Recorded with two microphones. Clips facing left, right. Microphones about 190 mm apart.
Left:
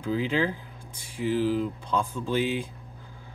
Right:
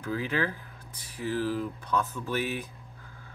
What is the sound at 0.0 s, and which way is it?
Speech, 20° left (ahead or behind).